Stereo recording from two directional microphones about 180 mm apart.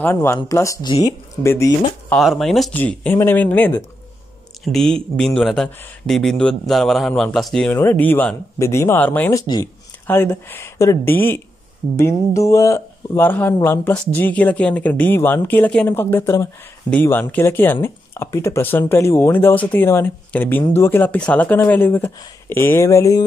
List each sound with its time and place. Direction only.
0.0 s speech: 15° left (ahead or behind)
2.1 s speech: centre (ahead or behind); by 23.2 s 15° left (ahead or behind)